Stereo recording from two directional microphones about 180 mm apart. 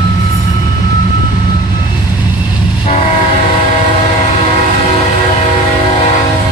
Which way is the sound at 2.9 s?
40° left (ahead or behind).